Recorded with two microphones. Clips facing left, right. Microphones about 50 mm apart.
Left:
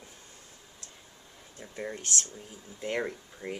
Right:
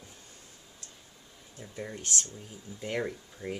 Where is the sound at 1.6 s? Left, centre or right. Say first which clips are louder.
Left 2 dB; centre.